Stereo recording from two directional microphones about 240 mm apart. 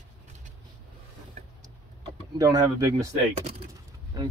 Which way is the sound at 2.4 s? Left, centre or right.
Centre.